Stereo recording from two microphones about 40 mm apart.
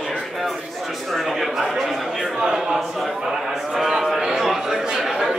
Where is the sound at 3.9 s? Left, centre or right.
Centre.